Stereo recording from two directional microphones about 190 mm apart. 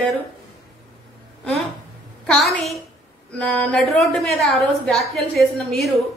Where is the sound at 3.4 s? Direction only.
5° left (ahead or behind).